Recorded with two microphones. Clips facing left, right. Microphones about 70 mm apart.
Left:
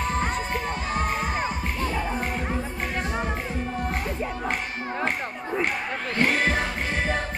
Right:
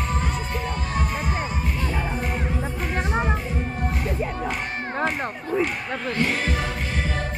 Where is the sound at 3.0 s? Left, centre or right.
Right.